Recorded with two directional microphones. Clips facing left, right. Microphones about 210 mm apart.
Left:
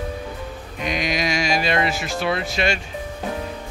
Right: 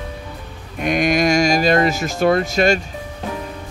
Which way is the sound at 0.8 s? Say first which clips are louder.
Right 7 dB; 50° right (ahead or behind).